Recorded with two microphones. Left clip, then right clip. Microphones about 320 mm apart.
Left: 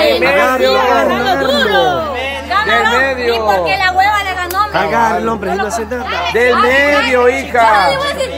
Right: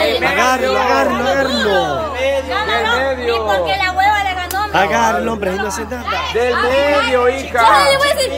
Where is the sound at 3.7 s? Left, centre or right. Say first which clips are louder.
Left 3 dB; centre.